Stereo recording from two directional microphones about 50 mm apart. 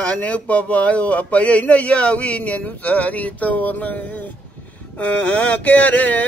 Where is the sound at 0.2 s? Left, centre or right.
Left.